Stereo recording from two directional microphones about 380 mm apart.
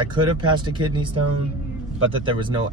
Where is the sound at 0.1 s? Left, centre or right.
Centre.